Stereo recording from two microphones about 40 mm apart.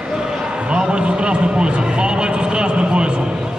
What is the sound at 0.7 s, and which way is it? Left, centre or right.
A man's voice, right.